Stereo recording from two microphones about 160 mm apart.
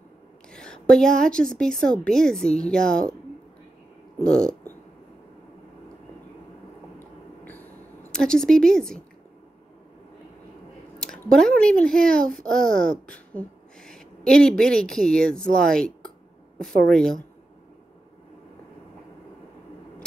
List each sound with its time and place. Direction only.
0.5 s a woman's voice: 5° left (ahead or behind)
4.2 s a sound: 5° left (ahead or behind)
7.0 s a sound: 10° left (ahead or behind)
8.1 s a woman's voice: 5° left (ahead or behind)
11.0 s a woman's voice: 5° left (ahead or behind)
13.8 s a woman's voice: 5° left (ahead or behind)
16.9 s a woman's voice: 5° left (ahead or behind)